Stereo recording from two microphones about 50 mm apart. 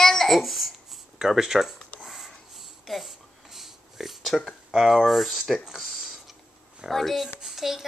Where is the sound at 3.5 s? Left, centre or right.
Centre.